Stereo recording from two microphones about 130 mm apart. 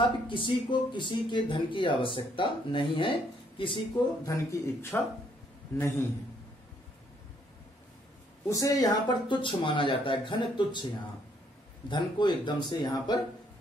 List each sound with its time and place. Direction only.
0.0 s speech: 40° left (ahead or behind)
4.3 s speech: 25° left (ahead or behind)
4.9 s speech: 15° left (ahead or behind)
8.5 s speech: 25° left (ahead or behind)
9.4 s speech: 40° left (ahead or behind)
11.9 s speech: 35° left (ahead or behind)